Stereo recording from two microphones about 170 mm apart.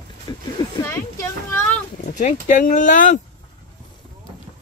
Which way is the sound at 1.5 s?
10° left (ahead or behind).